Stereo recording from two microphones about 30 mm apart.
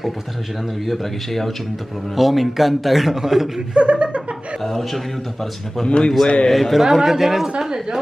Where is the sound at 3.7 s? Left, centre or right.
Right.